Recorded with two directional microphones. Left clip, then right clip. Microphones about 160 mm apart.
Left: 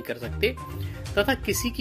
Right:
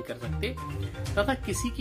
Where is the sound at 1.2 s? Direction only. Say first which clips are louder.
Left 4 dB; 10° left (ahead or behind).